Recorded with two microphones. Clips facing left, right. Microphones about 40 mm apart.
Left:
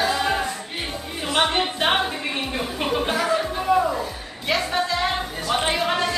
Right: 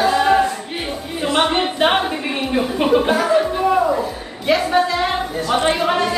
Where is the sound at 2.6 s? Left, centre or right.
Centre.